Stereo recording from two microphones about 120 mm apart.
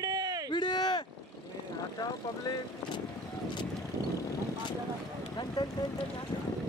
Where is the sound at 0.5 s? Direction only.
40° left (ahead or behind).